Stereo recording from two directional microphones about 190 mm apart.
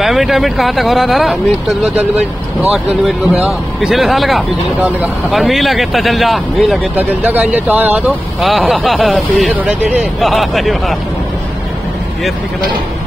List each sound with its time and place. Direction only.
0.0 s speech: centre (ahead or behind)
2.0 s speech: 35° right (ahead or behind)
3.3 s speech: centre (ahead or behind)